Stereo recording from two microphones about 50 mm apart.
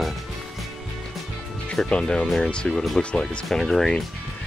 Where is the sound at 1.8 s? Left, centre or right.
Centre.